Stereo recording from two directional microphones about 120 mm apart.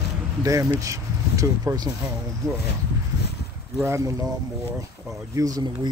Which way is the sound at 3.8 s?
25° right (ahead or behind).